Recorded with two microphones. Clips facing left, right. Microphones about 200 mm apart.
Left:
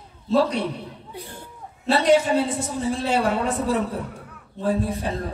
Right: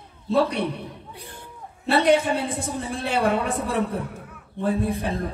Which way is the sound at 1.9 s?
60° right (ahead or behind).